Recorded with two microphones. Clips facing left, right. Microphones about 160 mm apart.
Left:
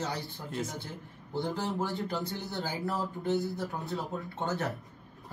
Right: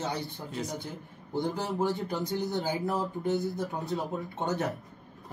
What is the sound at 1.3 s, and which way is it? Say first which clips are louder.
Speech: right 2 dB; 20° right (ahead or behind).